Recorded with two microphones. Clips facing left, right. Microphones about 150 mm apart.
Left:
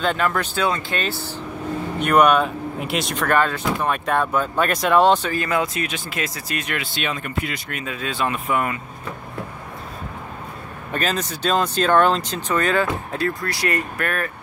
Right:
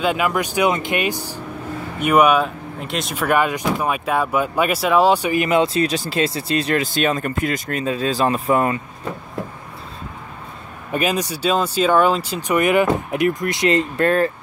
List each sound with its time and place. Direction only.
0.0 s speech: 10° right (ahead or behind); by 8.7 s 35° right (ahead or behind)
10.9 s speech: 10° right (ahead or behind); by 14.3 s 30° right (ahead or behind)